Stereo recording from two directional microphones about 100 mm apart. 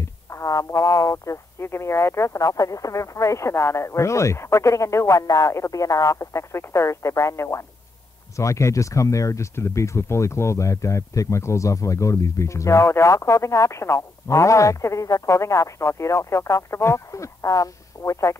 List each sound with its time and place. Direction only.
0.3 s speech: 30° left (ahead or behind)